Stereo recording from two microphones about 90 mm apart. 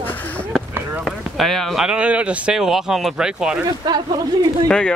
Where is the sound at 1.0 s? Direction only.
Centre (ahead or behind).